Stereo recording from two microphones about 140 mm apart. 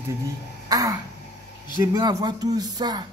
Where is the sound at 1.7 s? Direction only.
25° right (ahead or behind).